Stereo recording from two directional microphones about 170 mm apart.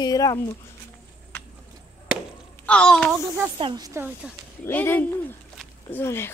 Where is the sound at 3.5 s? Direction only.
25° right (ahead or behind).